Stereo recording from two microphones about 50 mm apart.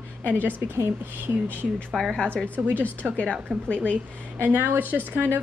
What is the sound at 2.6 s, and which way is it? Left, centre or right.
Speech, right.